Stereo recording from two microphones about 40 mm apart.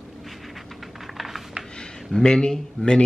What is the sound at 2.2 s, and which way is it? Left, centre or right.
Speech, left.